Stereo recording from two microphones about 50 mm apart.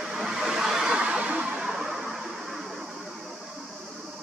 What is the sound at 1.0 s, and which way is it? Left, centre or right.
Music, right.